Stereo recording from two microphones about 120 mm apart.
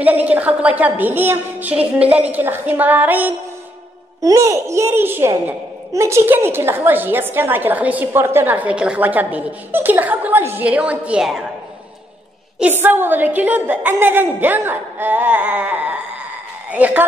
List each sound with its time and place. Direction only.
0.0 s a woman's voice: 15° right (ahead or behind)
4.2 s a child's voice: 25° right (ahead or behind); by 11.4 s 5° right (ahead or behind)
12.5 s a woman's voice: 15° right (ahead or behind)